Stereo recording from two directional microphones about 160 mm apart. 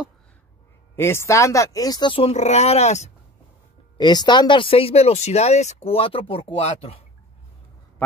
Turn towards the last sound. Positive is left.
turn(degrees=40)  # may be behind; listen again after turning